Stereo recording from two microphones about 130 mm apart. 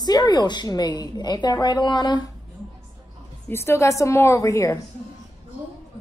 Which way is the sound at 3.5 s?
20° left (ahead or behind).